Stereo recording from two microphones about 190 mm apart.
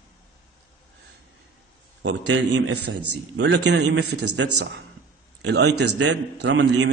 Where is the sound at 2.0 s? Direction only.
75° right (ahead or behind).